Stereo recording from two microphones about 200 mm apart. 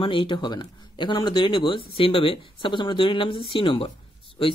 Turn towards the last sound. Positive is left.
turn(degrees=25)  # may be behind; listen again after turning